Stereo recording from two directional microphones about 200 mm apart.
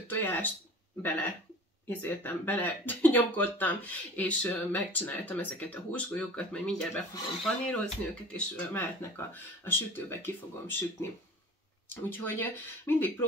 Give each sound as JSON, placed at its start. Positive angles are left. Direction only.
{"t": 0.1, "sound": "speech", "side_deg": 10}
{"t": 1.9, "sound": "speech", "side_deg": 10}